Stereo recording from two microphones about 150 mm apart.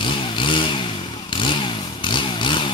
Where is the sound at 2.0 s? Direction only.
30° left (ahead or behind).